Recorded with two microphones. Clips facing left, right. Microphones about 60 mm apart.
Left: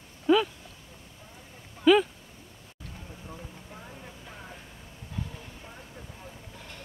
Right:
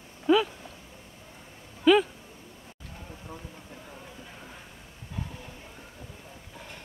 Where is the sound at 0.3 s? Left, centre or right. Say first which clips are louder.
Even; centre.